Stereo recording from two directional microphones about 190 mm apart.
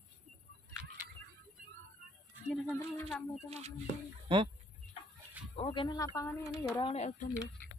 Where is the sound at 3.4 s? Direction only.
35° right (ahead or behind).